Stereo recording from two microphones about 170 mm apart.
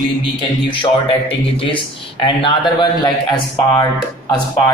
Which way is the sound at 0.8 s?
30° left (ahead or behind).